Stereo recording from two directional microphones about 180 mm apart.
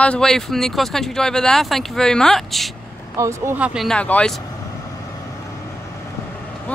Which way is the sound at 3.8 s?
5° left (ahead or behind).